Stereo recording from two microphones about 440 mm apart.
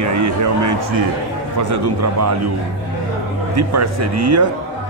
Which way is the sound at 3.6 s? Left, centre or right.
Right.